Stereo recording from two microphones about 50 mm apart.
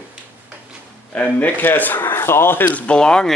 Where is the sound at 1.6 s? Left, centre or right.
Left.